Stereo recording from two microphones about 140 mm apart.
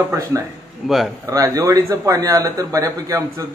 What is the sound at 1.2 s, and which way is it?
Speech, 25° right (ahead or behind).